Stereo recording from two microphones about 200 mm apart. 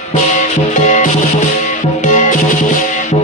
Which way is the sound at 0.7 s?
40° left (ahead or behind).